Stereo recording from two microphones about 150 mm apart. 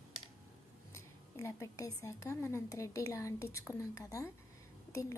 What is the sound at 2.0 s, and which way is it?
Speech, 20° left (ahead or behind).